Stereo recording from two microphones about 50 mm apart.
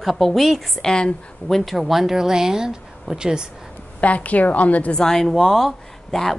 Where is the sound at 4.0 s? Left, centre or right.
Left.